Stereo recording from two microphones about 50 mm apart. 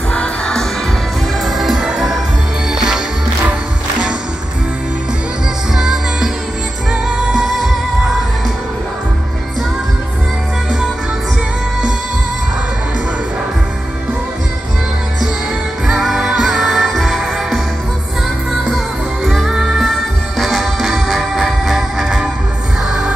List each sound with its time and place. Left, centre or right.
0.1 s music: left
1.4 s music: centre
5.8 s music: centre
7.4 s music: centre
15.9 s music: centre
19.8 s music: centre